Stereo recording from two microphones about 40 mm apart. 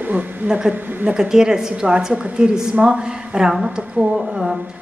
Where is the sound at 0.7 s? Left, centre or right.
Right.